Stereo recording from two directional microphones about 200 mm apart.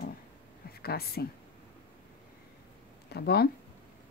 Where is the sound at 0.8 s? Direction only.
50° left (ahead or behind).